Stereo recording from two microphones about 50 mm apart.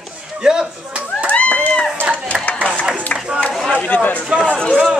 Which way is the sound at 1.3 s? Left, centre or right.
Left.